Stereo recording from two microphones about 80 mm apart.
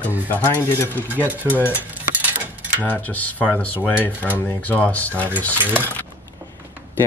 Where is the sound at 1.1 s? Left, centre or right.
Right.